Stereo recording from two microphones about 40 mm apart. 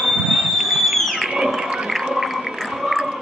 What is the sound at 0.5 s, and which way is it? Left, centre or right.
Fireworks, centre.